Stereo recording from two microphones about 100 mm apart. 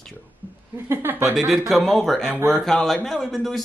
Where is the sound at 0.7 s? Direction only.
25° right (ahead or behind).